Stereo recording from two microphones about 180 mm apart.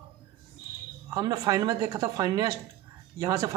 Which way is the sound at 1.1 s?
20° right (ahead or behind).